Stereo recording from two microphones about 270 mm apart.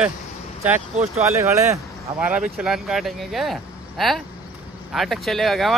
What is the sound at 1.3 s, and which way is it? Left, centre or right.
Speech, centre.